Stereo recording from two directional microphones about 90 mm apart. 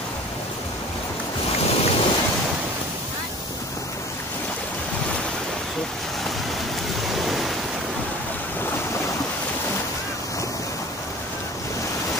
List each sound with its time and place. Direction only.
1.6 s waves: 90° left
7.2 s waves: centre (ahead or behind)